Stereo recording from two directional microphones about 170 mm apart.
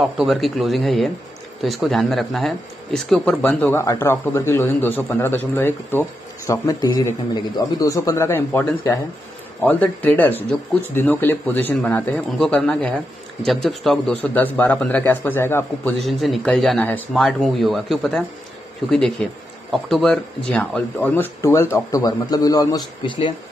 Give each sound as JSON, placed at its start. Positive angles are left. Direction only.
{"t": 0.0, "sound": "speech", "side_deg": 0}
{"t": 3.8, "sound": "a man's voice", "side_deg": 15}
{"t": 16.0, "sound": "a man's voice", "side_deg": 0}